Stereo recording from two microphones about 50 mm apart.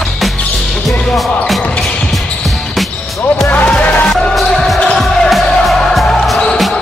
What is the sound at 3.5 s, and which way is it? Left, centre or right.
Music, left.